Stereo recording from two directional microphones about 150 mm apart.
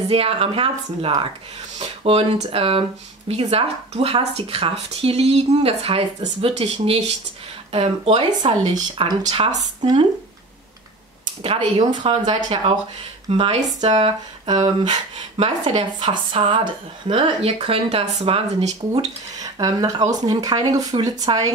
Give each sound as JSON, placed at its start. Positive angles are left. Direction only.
{"t": 0.1, "sound": "speech", "side_deg": -40}
{"t": 8.4, "sound": "speech", "side_deg": -30}
{"t": 9.2, "sound": "speech", "side_deg": -45}
{"t": 9.6, "sound": "speech", "side_deg": -30}
{"t": 11.4, "sound": "speech", "side_deg": -40}
{"t": 18.9, "sound": "speech", "side_deg": -25}